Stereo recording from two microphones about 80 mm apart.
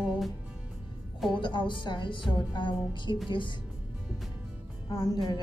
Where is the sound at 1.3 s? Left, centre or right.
Left.